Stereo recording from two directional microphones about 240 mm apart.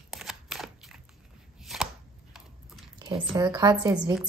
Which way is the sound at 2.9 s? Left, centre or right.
Centre.